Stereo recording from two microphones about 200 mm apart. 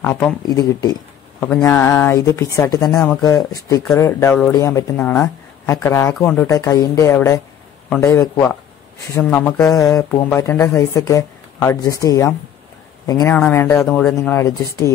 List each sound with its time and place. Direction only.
0.0 s speech: 10° left (ahead or behind)